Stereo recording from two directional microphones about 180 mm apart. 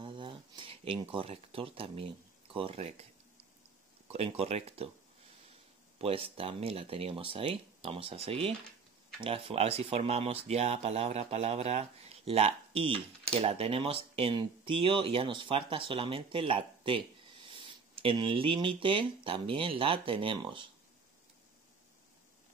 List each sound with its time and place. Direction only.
0.0 s speech: 25° right (ahead or behind)
4.1 s speech: 35° right (ahead or behind)
5.9 s speech: 35° right (ahead or behind)